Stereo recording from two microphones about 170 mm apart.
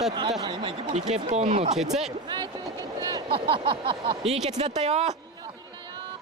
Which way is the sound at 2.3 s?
25° right (ahead or behind).